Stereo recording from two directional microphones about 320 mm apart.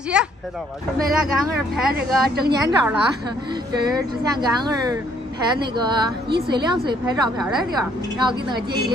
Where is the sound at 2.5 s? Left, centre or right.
Centre.